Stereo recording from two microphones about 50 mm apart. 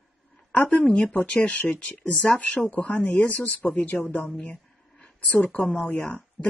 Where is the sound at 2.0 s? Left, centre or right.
Centre.